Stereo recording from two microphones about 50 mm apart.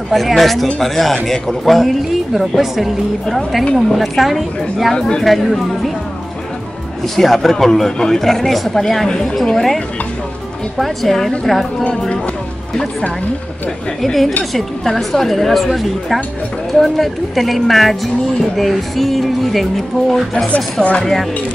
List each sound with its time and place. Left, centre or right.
0.1 s speech: centre
4.9 s speech: centre
5.2 s speech: centre
7.2 s speech: centre
10.8 s speech: centre
14.0 s speech: centre